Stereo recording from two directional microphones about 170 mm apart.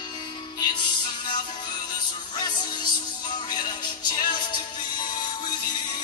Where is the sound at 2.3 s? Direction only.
25° left (ahead or behind).